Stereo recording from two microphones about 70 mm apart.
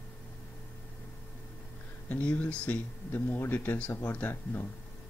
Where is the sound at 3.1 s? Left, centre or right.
Left.